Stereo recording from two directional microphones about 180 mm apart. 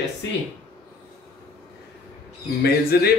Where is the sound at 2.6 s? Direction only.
60° left (ahead or behind).